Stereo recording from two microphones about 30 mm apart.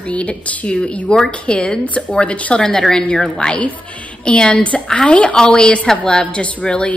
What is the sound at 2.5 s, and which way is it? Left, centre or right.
A woman's voice, left.